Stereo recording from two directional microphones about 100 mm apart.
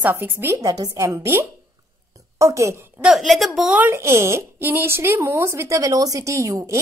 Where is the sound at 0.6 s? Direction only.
40° right (ahead or behind).